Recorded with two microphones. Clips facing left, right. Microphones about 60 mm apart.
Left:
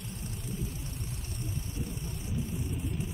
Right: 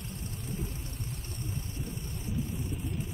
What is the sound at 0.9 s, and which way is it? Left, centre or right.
Vehicle, centre.